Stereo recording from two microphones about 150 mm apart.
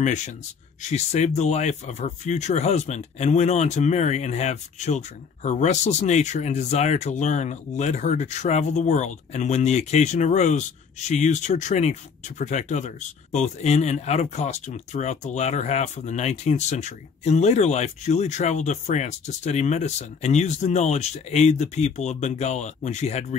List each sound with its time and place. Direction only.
0.0 s speech: 55° left (ahead or behind)